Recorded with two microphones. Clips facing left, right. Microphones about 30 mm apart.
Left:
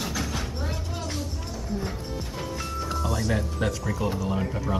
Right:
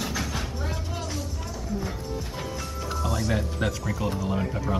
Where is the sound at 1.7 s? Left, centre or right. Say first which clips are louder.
Even; left.